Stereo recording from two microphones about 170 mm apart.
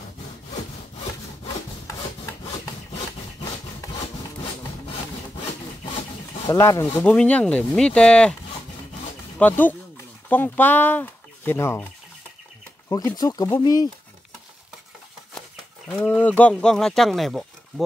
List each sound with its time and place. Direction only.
6.4 s speech: 20° left (ahead or behind)
7.0 s speech: 10° left (ahead or behind)
9.4 s speech: 10° left (ahead or behind)
12.9 s speech: 20° left (ahead or behind)
15.9 s speech: 10° left (ahead or behind)